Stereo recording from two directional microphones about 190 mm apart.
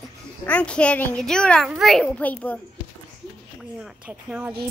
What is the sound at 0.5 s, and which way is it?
A child's voice, 5° left (ahead or behind).